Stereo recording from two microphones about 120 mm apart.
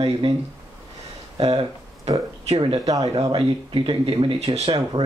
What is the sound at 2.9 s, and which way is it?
Speech, 35° right (ahead or behind).